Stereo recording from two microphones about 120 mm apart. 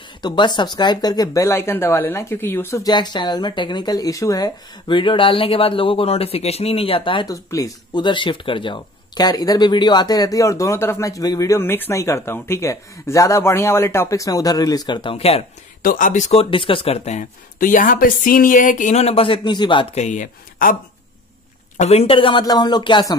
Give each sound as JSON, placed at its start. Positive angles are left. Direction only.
{"t": 0.2, "sound": "speech", "side_deg": 40}
{"t": 2.8, "sound": "speech", "side_deg": 35}
{"t": 7.3, "sound": "speech", "side_deg": 30}
{"t": 8.0, "sound": "speech", "side_deg": 40}
{"t": 15.1, "sound": "speech", "side_deg": 55}
{"t": 16.0, "sound": "speech", "side_deg": 85}
{"t": 16.3, "sound": "speech", "side_deg": 45}
{"t": 19.9, "sound": "speech", "side_deg": 80}
{"t": 21.7, "sound": "speech", "side_deg": 60}
{"t": 22.4, "sound": "speech", "side_deg": 35}